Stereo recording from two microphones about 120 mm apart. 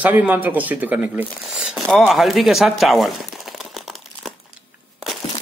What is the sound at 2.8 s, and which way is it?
Crumpling, centre (ahead or behind).